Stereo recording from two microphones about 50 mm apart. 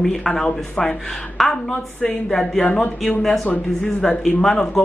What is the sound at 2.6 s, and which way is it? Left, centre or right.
Speech, left.